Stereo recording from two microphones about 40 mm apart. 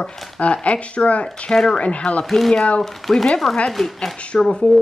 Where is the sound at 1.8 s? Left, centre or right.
Left.